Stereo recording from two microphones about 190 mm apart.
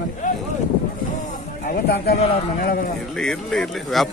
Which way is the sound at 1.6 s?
55° left (ahead or behind).